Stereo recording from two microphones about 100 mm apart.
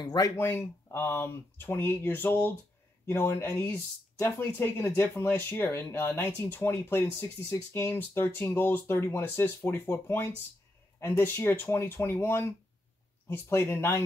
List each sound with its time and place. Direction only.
0.0 s speech: 40° left (ahead or behind)
0.4 s speech: 25° left (ahead or behind)